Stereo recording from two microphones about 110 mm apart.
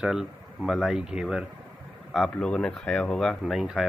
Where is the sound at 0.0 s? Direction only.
5° right (ahead or behind).